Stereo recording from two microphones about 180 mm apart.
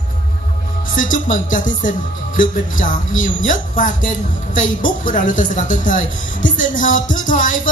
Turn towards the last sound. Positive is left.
turn(degrees=45)  # may be behind; listen again after turning